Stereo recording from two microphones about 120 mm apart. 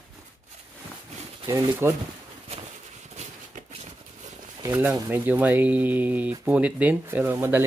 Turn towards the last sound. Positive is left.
turn(degrees=-20)  # may be behind; listen again after turning